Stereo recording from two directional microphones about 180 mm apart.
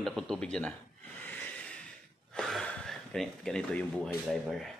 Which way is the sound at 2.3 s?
5° left (ahead or behind).